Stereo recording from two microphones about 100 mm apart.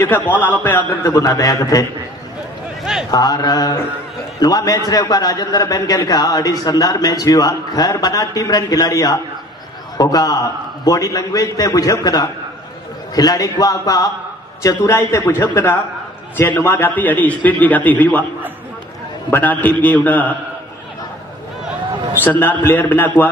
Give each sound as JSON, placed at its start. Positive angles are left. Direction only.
{"t": 0.4, "sound": "a man's voice", "side_deg": 20}
{"t": 1.0, "sound": "a man's voice", "side_deg": 30}
{"t": 2.8, "sound": "a sound", "side_deg": -5}
{"t": 3.1, "sound": "a man's voice", "side_deg": 40}
{"t": 19.3, "sound": "a man's voice", "side_deg": 15}
{"t": 22.2, "sound": "a man's voice", "side_deg": 15}